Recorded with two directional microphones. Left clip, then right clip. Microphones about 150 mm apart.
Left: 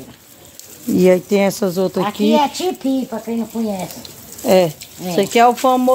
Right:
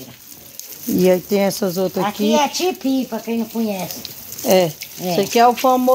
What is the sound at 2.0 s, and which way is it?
Speech, 35° right (ahead or behind).